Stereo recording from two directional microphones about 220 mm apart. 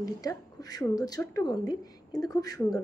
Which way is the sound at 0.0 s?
15° left (ahead or behind).